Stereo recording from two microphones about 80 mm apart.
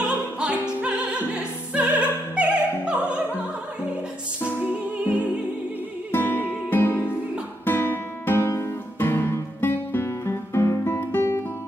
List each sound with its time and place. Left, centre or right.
0.0 s opera: centre
5.0 s music: centre
6.1 s music: left
7.6 s guitar: left